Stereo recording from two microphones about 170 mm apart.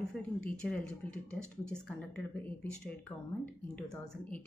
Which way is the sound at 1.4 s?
15° right (ahead or behind).